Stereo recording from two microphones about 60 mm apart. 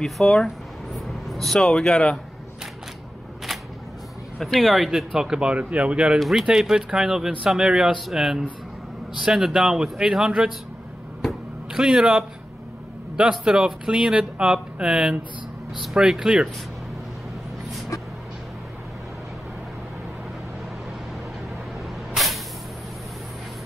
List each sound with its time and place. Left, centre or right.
0.0 s speech: centre
4.4 s speech: centre
6.1 s speech: centre
11.2 s music: centre
13.2 s speech: centre
22.1 s vehicle: centre